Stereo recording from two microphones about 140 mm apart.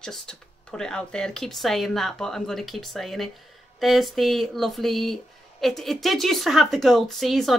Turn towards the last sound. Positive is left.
turn(degrees=0)  # may be behind; listen again after turning